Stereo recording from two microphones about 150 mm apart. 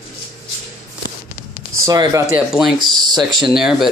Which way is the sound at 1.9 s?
25° right (ahead or behind).